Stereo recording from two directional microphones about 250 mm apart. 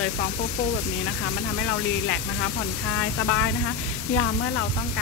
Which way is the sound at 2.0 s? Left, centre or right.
Left.